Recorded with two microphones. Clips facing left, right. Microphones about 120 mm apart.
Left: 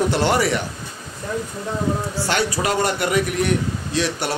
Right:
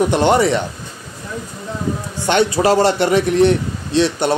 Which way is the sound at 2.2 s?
25° right (ahead or behind).